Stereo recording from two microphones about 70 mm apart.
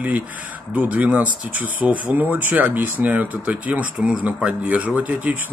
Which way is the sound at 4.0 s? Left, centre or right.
Centre.